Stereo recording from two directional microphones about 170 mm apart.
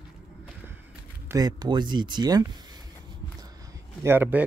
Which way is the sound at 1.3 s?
25° right (ahead or behind).